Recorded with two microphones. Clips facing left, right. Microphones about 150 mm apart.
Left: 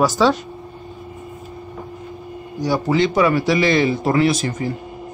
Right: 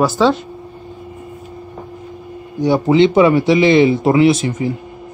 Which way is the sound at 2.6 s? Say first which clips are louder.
Right 6 dB; 25° right (ahead or behind).